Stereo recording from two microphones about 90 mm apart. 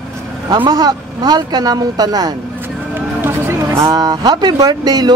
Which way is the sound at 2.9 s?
25° right (ahead or behind).